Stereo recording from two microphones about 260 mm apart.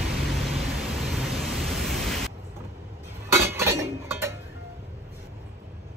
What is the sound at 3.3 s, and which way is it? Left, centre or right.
Chink, centre.